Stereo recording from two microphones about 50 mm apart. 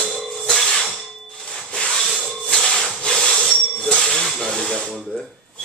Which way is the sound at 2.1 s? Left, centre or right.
Right.